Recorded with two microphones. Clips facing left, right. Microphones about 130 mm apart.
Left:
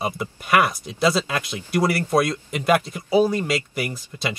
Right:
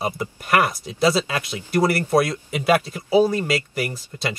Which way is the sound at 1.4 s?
55° right (ahead or behind).